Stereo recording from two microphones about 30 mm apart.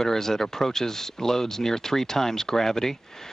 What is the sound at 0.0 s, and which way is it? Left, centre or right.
Speech, centre.